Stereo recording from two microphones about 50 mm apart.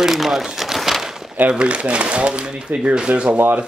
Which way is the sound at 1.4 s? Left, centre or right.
Right.